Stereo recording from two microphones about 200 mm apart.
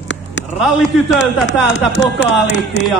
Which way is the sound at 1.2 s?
65° left (ahead or behind).